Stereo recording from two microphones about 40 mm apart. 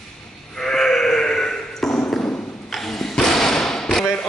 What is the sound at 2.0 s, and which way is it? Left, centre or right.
Ping, left.